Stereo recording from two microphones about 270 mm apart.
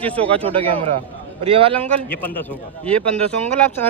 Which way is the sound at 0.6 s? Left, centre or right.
Centre.